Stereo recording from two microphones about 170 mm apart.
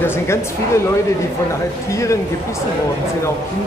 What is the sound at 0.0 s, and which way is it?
Speech, 15° left (ahead or behind).